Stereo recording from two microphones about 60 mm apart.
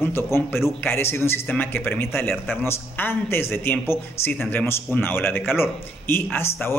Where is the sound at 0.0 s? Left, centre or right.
Left.